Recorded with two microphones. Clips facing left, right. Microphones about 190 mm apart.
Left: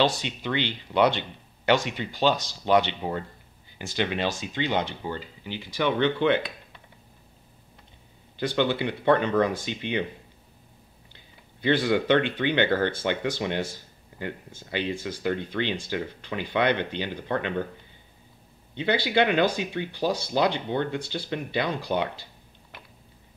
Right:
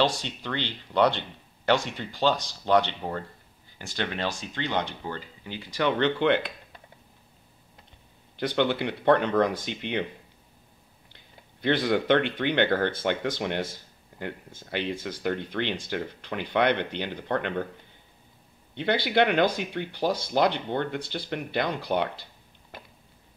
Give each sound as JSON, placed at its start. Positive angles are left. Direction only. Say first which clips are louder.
{"t": 0.4, "sound": "speech", "louder": "left 4 dB", "side_deg": 10}
{"t": 2.7, "sound": "speech", "louder": "left 1 dB", "side_deg": 10}
{"t": 8.4, "sound": "speech", "louder": "even", "side_deg": 5}
{"t": 11.6, "sound": "speech", "louder": "left 1 dB", "side_deg": 10}
{"t": 18.8, "sound": "speech", "louder": "even", "side_deg": 10}